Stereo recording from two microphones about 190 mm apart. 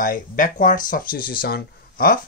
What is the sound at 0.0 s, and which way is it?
Speech, 45° left (ahead or behind).